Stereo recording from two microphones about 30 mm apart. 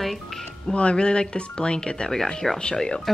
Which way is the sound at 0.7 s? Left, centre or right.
Left.